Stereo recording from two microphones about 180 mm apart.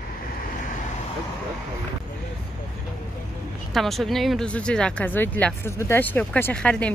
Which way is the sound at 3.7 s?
Centre (ahead or behind).